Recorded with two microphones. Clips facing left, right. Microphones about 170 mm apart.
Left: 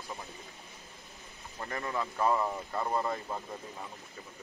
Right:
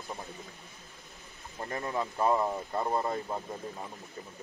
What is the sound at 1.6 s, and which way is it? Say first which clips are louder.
Speech: right 2 dB; 25° right (ahead or behind).